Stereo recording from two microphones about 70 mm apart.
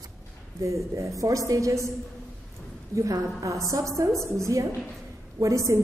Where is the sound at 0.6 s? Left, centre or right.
Right.